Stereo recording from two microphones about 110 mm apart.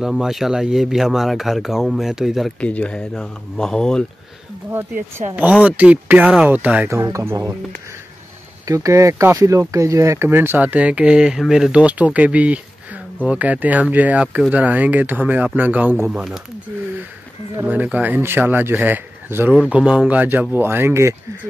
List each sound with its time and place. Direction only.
0.0 s speech: 5° right (ahead or behind)
2.6 s speech: 10° left (ahead or behind)
5.3 s speech: 15° right (ahead or behind)
6.9 s speech: 25° right (ahead or behind)
8.6 s speech: 30° right (ahead or behind); by 16.3 s 10° right (ahead or behind)
17.6 s speech: 15° right (ahead or behind)
19.7 s speech: 5° right (ahead or behind); by 21.2 s 25° right (ahead or behind)